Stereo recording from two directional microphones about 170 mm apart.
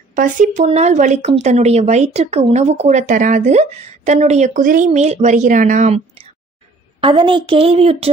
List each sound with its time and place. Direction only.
0.1 s speech: 50° right (ahead or behind)
7.0 s a woman's voice: 30° right (ahead or behind)